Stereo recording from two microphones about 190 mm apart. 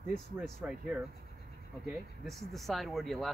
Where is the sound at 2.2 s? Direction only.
Centre (ahead or behind).